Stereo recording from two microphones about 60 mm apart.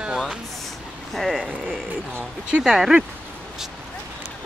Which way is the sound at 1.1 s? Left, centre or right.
Centre.